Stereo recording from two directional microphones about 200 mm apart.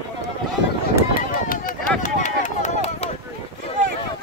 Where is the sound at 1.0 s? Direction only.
45° left (ahead or behind).